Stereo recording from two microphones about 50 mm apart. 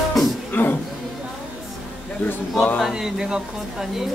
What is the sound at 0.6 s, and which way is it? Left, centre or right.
Speech, left.